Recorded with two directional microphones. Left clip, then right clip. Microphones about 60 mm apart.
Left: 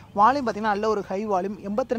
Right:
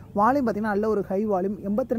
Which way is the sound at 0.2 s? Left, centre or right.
Right.